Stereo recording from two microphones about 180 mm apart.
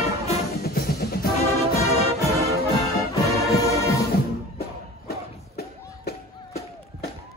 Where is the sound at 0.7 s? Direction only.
55° left (ahead or behind).